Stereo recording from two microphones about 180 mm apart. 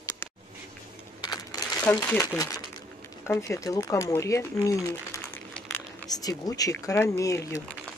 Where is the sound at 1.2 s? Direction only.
20° left (ahead or behind).